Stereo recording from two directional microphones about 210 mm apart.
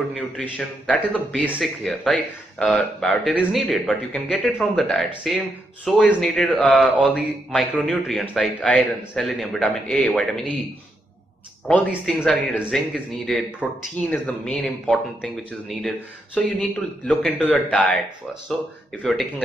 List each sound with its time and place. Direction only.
0.1 s speech: 5° left (ahead or behind)
11.6 s speech: 5° left (ahead or behind)
19.0 s speech: 5° left (ahead or behind)